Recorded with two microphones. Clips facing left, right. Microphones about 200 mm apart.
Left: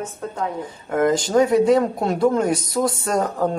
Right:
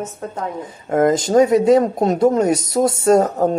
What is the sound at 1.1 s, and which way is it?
Speech, 20° right (ahead or behind).